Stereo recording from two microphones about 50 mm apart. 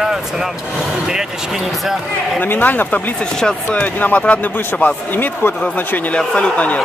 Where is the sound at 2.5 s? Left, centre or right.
Left.